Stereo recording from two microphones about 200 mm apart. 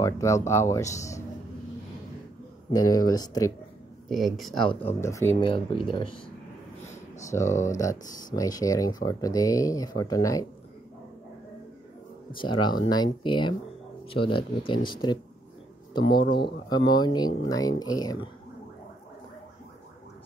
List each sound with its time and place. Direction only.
0.0 s speech: 15° left (ahead or behind)
2.7 s speech: 20° left (ahead or behind)
4.1 s speech: centre (ahead or behind)
5.0 s speech: 15° left (ahead or behind)
5.3 s speech: 25° left (ahead or behind)
7.2 s speech: 15° left (ahead or behind)
12.4 s speech: 25° left (ahead or behind)